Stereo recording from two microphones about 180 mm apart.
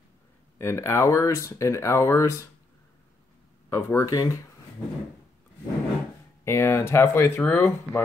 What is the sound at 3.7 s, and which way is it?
Speech, 15° left (ahead or behind).